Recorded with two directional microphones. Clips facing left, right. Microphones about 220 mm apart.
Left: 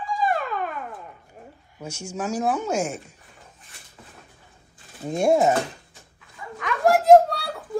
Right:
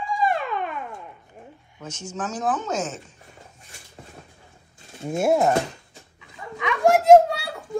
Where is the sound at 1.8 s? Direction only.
10° left (ahead or behind).